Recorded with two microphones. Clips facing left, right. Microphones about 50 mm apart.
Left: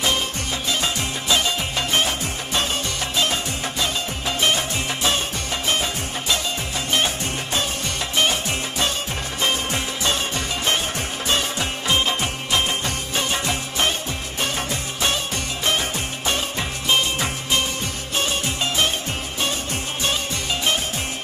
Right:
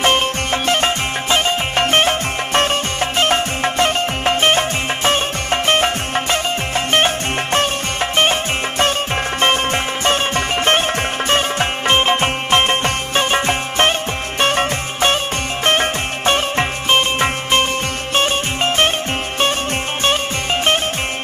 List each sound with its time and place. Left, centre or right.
0.0 s music: right
8.2 s music: right